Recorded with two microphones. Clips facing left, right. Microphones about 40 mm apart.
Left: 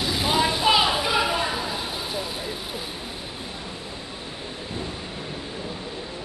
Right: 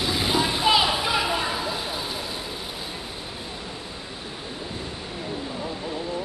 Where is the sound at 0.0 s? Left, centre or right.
Centre.